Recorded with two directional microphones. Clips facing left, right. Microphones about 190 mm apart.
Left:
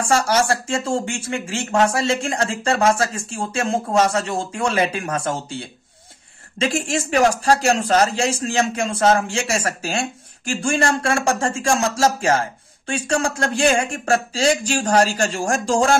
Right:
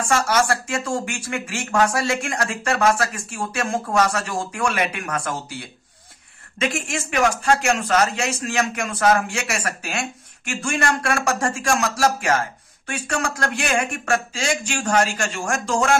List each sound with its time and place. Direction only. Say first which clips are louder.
0.0 s a man's voice: left 2 dB; 30° left (ahead or behind)